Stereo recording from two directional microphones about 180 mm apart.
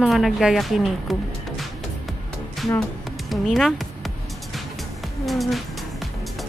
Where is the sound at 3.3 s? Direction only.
Centre (ahead or behind).